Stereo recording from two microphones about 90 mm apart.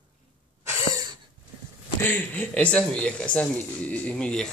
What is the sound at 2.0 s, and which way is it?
Speech, 20° left (ahead or behind).